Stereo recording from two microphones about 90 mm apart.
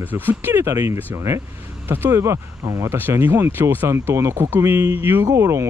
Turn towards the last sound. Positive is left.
turn(degrees=-35)  # may be behind; listen again after turning